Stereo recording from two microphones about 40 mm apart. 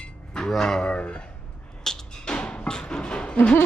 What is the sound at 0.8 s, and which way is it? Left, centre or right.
Speech, left.